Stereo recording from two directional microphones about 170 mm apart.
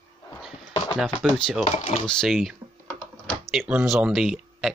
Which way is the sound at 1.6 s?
45° left (ahead or behind).